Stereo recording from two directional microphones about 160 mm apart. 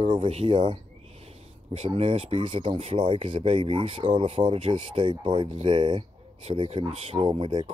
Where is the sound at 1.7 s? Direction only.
35° right (ahead or behind).